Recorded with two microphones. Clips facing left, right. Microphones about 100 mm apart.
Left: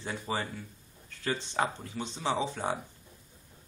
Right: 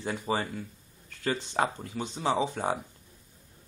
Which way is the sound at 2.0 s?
15° right (ahead or behind).